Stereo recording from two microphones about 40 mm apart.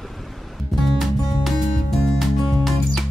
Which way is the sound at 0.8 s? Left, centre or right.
Centre.